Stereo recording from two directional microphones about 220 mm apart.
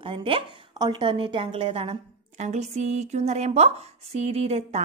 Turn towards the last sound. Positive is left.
turn(degrees=-30)  # may be behind; listen again after turning